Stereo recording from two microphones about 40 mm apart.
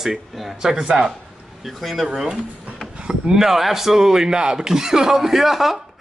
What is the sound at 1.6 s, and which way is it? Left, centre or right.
Speech, centre.